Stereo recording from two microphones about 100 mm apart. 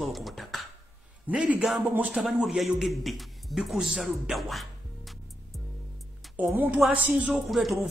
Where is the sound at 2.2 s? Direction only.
5° right (ahead or behind).